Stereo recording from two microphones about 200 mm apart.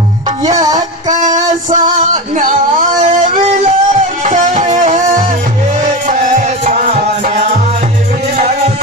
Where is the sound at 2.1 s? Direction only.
40° right (ahead or behind).